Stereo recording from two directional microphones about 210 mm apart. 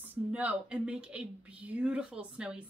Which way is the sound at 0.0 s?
10° right (ahead or behind).